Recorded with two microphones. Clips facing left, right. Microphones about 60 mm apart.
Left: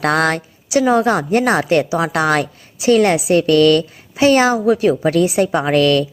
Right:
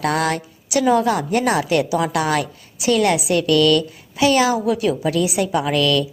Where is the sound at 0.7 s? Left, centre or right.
Left.